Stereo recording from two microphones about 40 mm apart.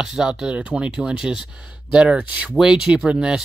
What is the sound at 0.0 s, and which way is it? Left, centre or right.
Speech, centre.